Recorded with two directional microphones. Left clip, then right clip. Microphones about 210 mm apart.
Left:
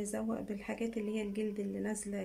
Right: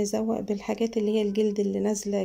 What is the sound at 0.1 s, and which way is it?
Speech, 25° right (ahead or behind).